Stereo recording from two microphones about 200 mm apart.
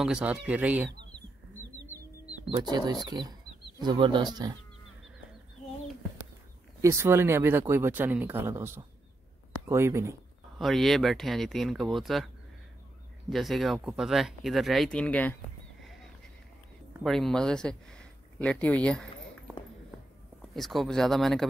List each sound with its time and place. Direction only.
0.0 s speech: 5° right (ahead or behind)
3.1 s speech: 20° right (ahead or behind)
6.8 s speech: 15° right (ahead or behind)
10.6 s speech: centre (ahead or behind)
13.3 s speech: centre (ahead or behind)
17.0 s speech: centre (ahead or behind)
20.5 s speech: centre (ahead or behind)